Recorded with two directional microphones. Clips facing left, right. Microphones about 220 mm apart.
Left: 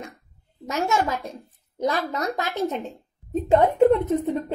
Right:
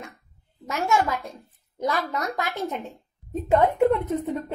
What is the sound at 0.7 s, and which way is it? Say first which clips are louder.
A woman's voice: even; 20° left (ahead or behind).